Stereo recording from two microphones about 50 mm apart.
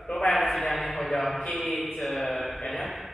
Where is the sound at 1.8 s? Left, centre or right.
Centre.